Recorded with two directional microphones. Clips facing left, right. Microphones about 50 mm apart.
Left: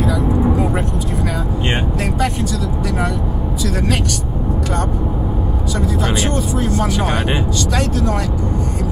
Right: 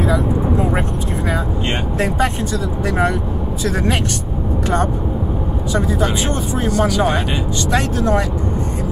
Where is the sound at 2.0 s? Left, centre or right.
Right.